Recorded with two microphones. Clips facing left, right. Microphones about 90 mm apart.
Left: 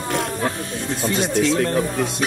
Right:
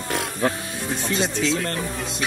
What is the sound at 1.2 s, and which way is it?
Speech, 60° left (ahead or behind).